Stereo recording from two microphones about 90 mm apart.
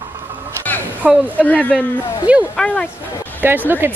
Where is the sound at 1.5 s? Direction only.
15° left (ahead or behind).